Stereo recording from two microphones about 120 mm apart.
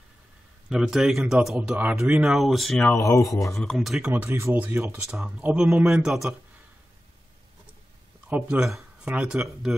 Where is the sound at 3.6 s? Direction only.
5° left (ahead or behind).